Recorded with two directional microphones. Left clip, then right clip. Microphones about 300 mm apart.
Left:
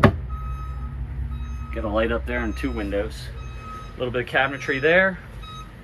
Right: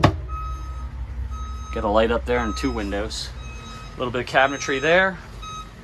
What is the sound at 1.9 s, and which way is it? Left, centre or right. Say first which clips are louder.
Speech: right 4 dB; centre.